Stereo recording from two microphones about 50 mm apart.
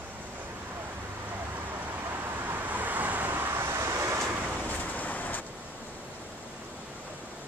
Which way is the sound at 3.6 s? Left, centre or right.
Right.